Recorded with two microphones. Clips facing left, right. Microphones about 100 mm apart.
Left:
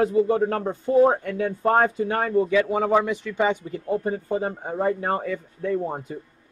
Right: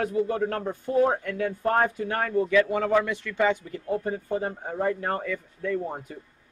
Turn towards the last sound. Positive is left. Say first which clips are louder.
# left 3 dB
turn(degrees=25)  # may be behind; listen again after turning